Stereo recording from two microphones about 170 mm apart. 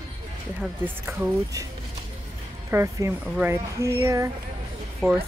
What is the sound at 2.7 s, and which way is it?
Speech, 15° right (ahead or behind).